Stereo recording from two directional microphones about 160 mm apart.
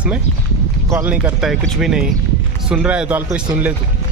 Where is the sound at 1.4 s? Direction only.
Centre (ahead or behind).